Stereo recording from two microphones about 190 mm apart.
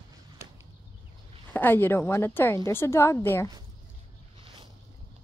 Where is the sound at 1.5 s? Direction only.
10° left (ahead or behind).